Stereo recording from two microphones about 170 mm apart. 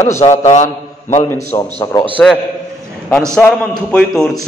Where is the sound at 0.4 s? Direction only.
40° left (ahead or behind).